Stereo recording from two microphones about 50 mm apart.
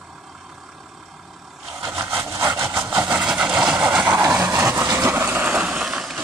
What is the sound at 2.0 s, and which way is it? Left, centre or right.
Vehicle, right.